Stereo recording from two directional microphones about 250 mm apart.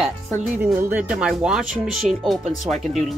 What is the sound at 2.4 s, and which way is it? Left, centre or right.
Speech, right.